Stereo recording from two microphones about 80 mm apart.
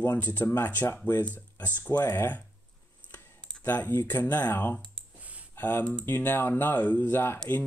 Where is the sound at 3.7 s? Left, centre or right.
Left.